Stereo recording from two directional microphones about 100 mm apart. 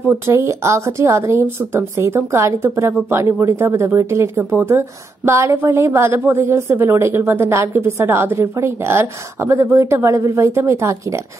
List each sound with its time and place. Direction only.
0.0 s a woman's voice: 20° right (ahead or behind)
0.3 s a woman's voice: 30° right (ahead or behind)